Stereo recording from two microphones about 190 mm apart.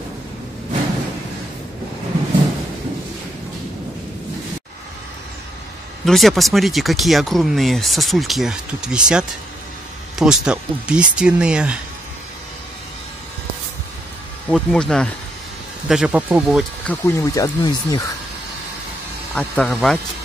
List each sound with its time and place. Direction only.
6.0 s speech: centre (ahead or behind)
14.5 s speech: 5° left (ahead or behind)
16.8 s speech: 15° left (ahead or behind)
19.3 s speech: 5° left (ahead or behind)